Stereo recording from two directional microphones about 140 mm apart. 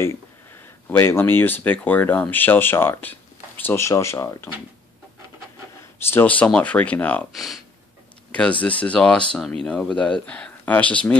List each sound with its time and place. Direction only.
0.8 s speech: 15° left (ahead or behind)
6.0 s speech: 15° left (ahead or behind)
7.3 s speech: centre (ahead or behind)
8.3 s speech: 10° left (ahead or behind)